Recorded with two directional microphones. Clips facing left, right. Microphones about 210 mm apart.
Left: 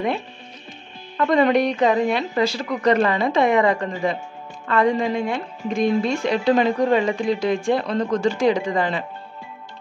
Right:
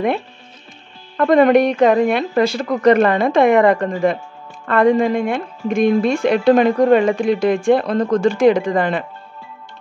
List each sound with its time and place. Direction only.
1.1 s speech: 50° right (ahead or behind)